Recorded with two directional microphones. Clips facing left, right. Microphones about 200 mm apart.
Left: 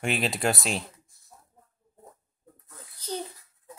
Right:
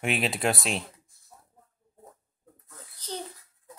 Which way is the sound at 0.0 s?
Centre (ahead or behind).